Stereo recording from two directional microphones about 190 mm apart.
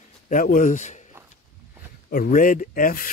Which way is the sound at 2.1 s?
45° left (ahead or behind).